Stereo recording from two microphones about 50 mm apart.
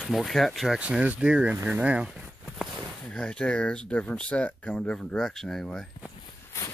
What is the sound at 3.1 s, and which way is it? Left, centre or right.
Speech, left.